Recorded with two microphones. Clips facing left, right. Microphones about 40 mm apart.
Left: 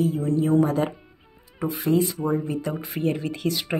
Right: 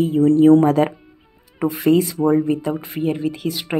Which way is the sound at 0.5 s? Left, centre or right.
Right.